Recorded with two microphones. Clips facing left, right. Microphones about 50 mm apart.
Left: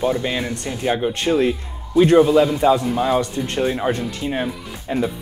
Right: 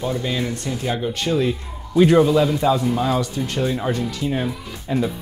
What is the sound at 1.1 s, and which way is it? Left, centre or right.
Speech, left.